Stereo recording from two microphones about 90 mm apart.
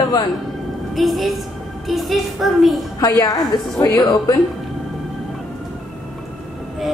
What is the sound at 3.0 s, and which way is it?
Speech, 40° left (ahead or behind).